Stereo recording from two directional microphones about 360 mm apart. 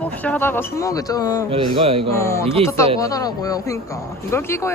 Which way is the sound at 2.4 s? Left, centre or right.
Centre.